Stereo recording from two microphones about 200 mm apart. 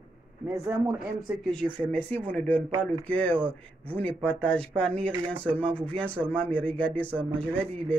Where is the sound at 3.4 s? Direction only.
30° right (ahead or behind).